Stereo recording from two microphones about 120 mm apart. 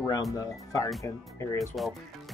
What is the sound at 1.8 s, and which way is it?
Speech, centre (ahead or behind).